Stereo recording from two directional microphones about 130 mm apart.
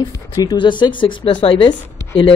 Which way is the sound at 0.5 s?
35° left (ahead or behind).